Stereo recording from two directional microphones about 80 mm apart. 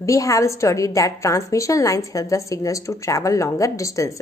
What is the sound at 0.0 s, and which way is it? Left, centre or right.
A woman's voice, left.